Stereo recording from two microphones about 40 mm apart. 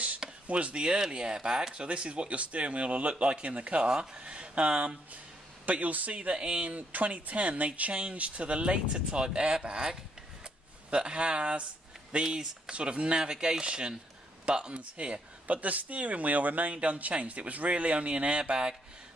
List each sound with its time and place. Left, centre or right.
0.5 s speech: right
1.8 s speech: right
5.7 s a man's voice: right
6.3 s a man's voice: right